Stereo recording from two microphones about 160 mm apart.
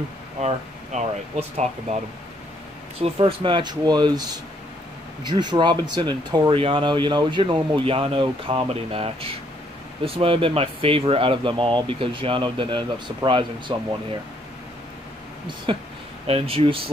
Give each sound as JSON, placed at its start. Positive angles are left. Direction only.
{"t": 0.4, "sound": "speech", "side_deg": -45}
{"t": 3.0, "sound": "speech", "side_deg": -35}
{"t": 15.4, "sound": "speech", "side_deg": -30}